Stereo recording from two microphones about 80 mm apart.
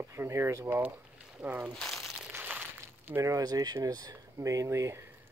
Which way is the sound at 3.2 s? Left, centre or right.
Right.